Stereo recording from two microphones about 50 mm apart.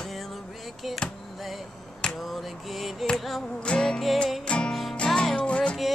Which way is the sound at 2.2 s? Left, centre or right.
Centre.